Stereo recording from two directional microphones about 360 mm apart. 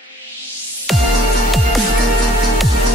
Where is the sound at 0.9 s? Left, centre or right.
Centre.